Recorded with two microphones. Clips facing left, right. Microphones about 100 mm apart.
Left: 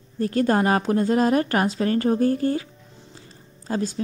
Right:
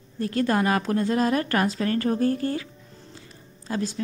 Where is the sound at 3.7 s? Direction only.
30° left (ahead or behind).